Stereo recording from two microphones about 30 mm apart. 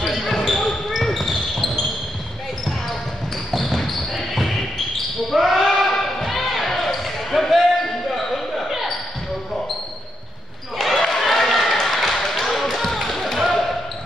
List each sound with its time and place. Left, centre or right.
0.0 s basketball bounce: centre
3.5 s basketball bounce: centre
5.8 s a sound: centre
6.2 s basketball bounce: centre
10.8 s basketball bounce: centre
11.2 s a sound: centre
13.4 s basketball bounce: centre